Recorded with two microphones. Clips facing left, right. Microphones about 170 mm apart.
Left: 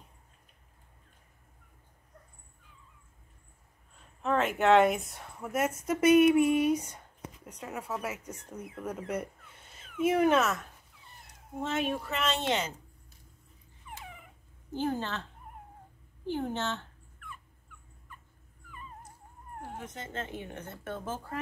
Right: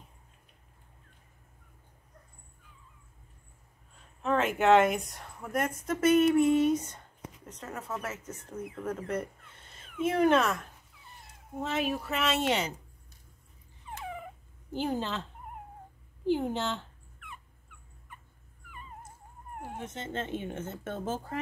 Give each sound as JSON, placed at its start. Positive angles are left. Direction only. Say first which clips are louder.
{"t": 4.2, "sound": "a woman's voice", "louder": "even", "side_deg": 0}
{"t": 11.6, "sound": "speech", "louder": "even", "side_deg": -5}
{"t": 14.8, "sound": "speech", "louder": "even", "side_deg": -15}
{"t": 16.3, "sound": "speech", "louder": "right 4 dB", "side_deg": -15}
{"t": 19.8, "sound": "speech", "louder": "right 4 dB", "side_deg": -25}